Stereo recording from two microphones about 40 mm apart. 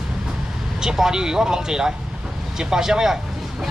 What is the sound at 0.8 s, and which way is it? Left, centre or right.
Speech, centre.